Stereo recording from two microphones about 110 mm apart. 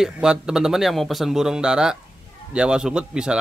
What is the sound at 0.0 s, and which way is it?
Speech, 5° right (ahead or behind).